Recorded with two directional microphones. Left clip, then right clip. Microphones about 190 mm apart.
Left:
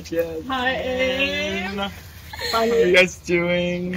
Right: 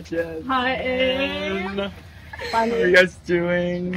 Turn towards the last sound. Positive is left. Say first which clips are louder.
# left 1 dB
turn(degrees=-5)  # may be behind; listen again after turning